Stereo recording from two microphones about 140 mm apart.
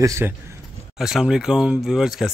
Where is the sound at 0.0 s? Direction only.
20° right (ahead or behind).